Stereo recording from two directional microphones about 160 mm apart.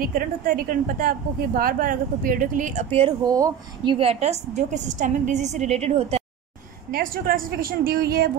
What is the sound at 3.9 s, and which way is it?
A woman's voice, 40° right (ahead or behind).